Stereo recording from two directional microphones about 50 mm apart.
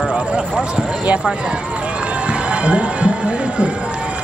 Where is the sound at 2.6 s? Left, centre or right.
Right.